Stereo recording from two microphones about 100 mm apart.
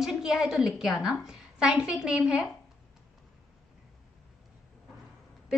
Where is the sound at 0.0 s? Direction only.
5° right (ahead or behind).